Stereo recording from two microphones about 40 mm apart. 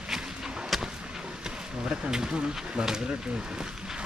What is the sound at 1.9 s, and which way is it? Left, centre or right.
Bee, centre.